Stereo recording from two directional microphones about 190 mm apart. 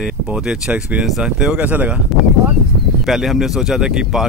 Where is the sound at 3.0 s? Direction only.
Centre (ahead or behind).